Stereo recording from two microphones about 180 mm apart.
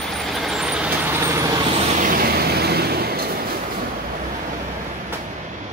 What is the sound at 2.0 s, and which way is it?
Vehicle, 60° right (ahead or behind).